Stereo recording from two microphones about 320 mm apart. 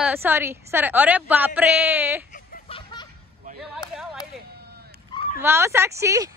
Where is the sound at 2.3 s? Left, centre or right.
Left.